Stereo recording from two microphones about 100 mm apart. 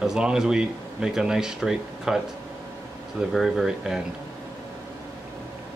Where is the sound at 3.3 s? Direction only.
Centre (ahead or behind).